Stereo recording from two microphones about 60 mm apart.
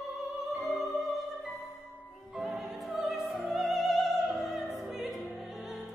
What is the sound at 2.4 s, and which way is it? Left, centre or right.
Music, centre.